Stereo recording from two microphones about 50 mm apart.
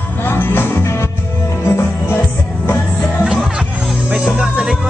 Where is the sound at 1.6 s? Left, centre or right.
Left.